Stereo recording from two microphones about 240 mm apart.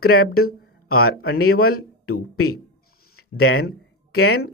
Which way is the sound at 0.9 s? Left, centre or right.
Left.